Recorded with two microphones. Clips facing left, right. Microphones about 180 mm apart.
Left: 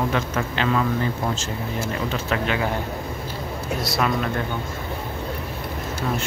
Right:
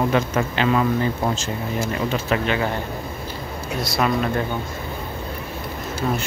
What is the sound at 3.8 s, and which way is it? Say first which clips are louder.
Speech: right 2 dB; centre (ahead or behind).